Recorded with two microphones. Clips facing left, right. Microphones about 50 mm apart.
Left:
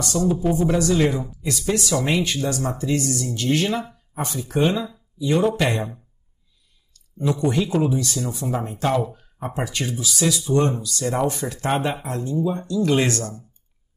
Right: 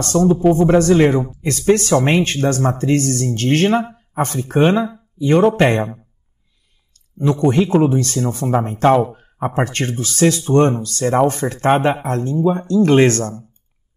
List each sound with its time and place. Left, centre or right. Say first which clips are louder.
0.0 s speech: right 7 dB; right
7.3 s speech: right 8 dB; right